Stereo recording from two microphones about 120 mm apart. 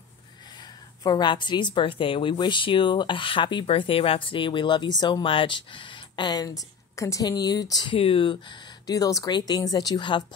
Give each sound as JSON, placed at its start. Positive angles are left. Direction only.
{"t": 0.5, "sound": "a woman's voice", "side_deg": 35}